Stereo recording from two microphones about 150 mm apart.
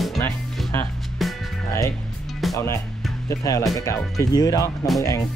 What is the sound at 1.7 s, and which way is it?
Speech, 20° left (ahead or behind).